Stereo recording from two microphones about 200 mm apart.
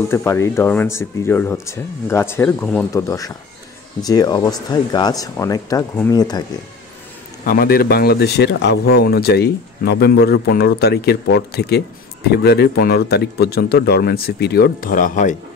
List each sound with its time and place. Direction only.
0.1 s speech: 15° left (ahead or behind)
7.4 s speech: 50° left (ahead or behind)